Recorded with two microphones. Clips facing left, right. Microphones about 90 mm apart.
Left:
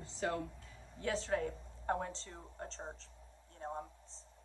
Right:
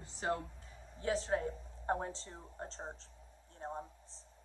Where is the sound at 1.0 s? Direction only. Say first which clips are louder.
Right 1 dB; 25° right (ahead or behind).